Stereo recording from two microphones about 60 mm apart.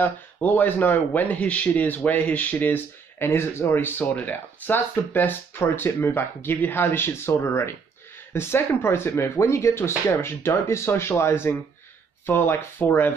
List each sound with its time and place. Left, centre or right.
0.0 s speech: left